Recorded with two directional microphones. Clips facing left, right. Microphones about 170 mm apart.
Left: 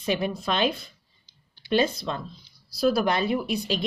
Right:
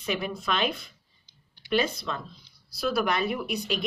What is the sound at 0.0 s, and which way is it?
Speech, 35° left (ahead or behind).